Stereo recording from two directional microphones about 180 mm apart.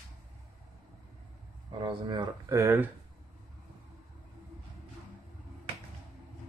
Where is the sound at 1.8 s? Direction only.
25° right (ahead or behind).